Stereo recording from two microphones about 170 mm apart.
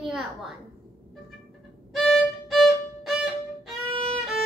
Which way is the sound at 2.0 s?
Centre (ahead or behind).